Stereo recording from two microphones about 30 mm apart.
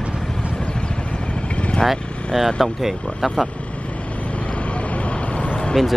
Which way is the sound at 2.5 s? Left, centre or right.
Centre.